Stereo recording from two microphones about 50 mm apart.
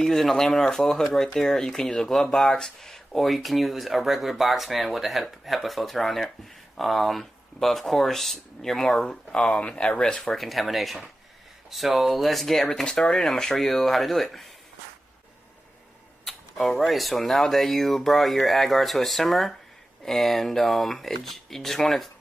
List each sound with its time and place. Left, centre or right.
0.0 s speech: centre
9.0 s speech: centre
10.2 s speech: centre
16.3 s speech: centre